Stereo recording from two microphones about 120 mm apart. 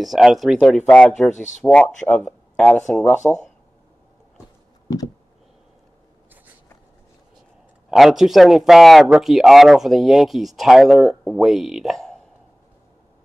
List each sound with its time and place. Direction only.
0.0 s speech: centre (ahead or behind)
4.8 s a sound: 30° left (ahead or behind)
7.9 s speech: 5° right (ahead or behind)